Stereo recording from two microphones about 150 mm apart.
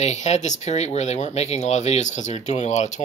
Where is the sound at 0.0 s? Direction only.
50° left (ahead or behind).